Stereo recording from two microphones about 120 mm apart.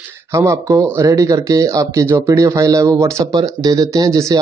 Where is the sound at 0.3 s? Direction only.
25° right (ahead or behind).